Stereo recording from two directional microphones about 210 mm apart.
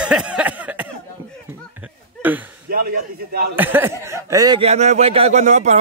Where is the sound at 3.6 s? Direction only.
10° right (ahead or behind).